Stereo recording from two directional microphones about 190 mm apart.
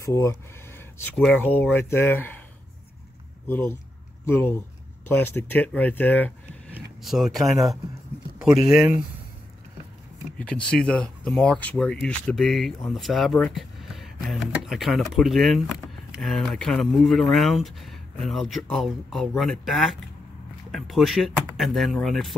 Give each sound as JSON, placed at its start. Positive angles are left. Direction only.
{"t": 0.0, "sound": "speech", "side_deg": 15}
{"t": 3.4, "sound": "speech", "side_deg": 10}
{"t": 6.7, "sound": "speech", "side_deg": 0}
{"t": 10.3, "sound": "speech", "side_deg": 5}